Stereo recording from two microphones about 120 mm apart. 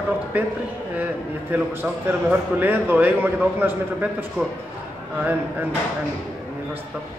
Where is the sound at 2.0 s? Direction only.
15° right (ahead or behind).